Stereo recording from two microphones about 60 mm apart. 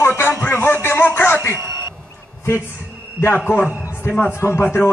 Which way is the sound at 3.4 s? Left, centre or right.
Left.